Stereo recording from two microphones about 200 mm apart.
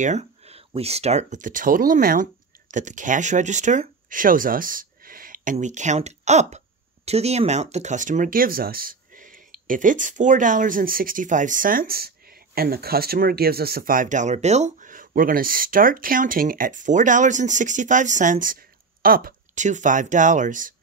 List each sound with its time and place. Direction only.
0.0 s speech: 35° right (ahead or behind)